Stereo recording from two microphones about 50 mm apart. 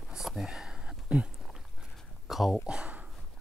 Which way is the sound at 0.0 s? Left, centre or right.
Centre.